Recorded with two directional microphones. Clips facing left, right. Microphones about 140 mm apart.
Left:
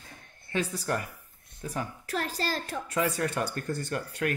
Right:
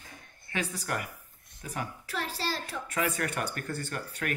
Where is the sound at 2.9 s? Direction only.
25° left (ahead or behind).